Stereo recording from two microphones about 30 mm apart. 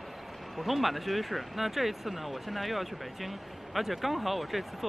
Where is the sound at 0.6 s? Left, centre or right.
Centre.